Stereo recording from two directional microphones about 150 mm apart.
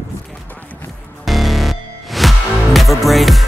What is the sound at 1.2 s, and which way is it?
Music, centre (ahead or behind).